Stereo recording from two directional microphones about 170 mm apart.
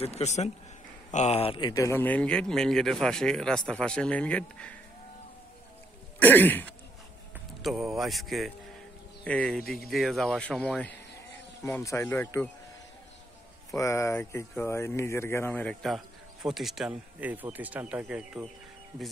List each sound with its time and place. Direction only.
0.0 s speech: 40° left (ahead or behind)
1.7 s speech: 15° left (ahead or behind)
6.1 s speech: 10° left (ahead or behind)
7.6 s speech: centre (ahead or behind)
11.6 s speech: 15° left (ahead or behind)
13.7 s speech: 15° left (ahead or behind); by 18.5 s 5° right (ahead or behind)